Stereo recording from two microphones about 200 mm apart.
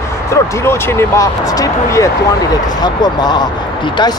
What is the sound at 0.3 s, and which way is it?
Speech, 15° left (ahead or behind).